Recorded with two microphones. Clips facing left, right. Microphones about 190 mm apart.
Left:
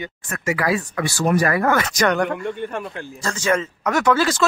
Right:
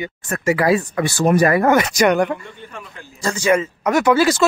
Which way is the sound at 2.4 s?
55° left (ahead or behind).